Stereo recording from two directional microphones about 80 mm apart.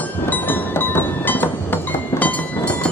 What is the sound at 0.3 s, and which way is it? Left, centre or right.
Music, left.